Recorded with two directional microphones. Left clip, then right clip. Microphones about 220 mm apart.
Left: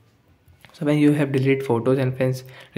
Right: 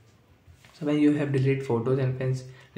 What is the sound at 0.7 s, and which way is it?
Speech, 40° left (ahead or behind).